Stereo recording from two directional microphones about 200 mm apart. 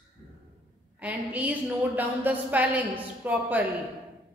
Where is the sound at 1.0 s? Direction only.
10° right (ahead or behind).